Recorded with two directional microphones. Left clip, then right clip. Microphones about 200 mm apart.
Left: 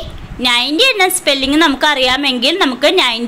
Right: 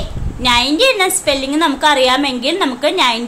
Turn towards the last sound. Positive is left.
turn(degrees=20)  # may be behind; listen again after turning